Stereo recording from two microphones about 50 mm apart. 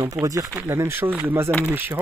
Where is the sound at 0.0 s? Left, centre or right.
Right.